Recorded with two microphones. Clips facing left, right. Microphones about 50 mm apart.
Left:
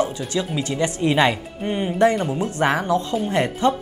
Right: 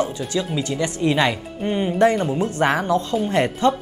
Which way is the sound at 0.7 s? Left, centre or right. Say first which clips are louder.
Left 1 dB; centre.